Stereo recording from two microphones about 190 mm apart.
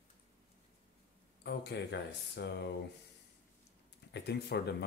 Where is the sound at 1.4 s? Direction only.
60° left (ahead or behind).